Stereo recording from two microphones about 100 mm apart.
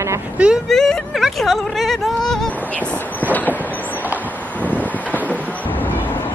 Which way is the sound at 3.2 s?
15° left (ahead or behind).